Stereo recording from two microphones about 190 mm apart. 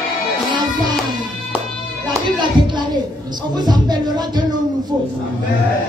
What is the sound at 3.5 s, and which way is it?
Music, 20° right (ahead or behind).